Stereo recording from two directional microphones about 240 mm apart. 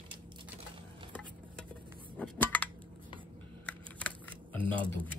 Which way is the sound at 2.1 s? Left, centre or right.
Centre.